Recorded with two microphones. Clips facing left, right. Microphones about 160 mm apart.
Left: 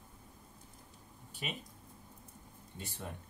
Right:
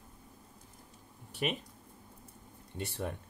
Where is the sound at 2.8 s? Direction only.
80° right.